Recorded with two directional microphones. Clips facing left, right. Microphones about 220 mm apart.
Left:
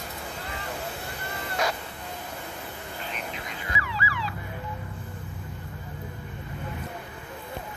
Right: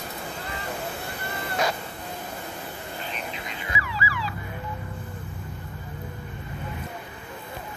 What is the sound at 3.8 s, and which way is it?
Emergency vehicle, 10° right (ahead or behind).